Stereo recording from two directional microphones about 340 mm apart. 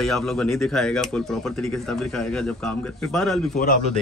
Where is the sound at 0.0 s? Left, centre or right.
Centre.